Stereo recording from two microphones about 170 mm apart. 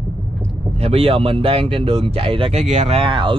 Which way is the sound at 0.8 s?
35° right (ahead or behind).